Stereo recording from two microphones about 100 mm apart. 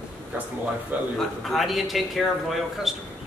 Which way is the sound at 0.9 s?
20° right (ahead or behind).